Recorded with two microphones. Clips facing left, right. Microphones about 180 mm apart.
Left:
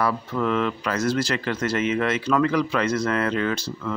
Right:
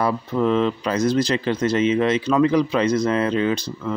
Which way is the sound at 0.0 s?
20° right (ahead or behind).